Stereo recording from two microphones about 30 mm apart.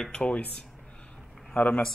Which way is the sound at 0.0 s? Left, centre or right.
Left.